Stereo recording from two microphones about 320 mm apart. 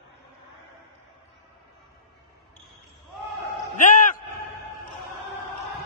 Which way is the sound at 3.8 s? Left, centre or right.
Left.